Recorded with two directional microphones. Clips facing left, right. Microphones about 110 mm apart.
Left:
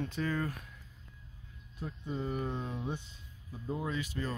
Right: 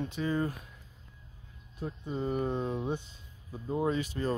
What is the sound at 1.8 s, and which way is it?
Speech, 30° right (ahead or behind).